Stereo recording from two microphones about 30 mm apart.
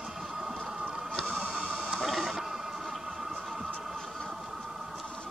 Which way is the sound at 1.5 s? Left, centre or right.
Centre.